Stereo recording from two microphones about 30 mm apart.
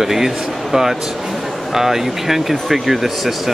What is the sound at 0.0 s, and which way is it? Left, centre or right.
Speech, centre.